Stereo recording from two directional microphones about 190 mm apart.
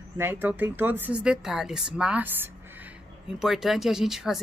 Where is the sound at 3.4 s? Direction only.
Centre (ahead or behind).